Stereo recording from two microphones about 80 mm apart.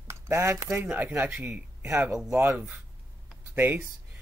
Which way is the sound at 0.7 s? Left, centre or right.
Right.